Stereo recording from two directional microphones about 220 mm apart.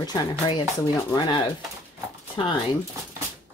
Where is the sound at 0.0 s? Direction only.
20° left (ahead or behind).